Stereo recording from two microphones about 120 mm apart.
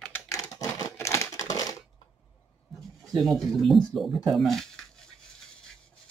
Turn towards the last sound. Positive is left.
turn(degrees=0)  # may be behind; listen again after turning